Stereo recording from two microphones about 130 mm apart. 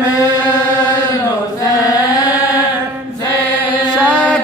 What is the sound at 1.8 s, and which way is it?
Chant, 30° left (ahead or behind).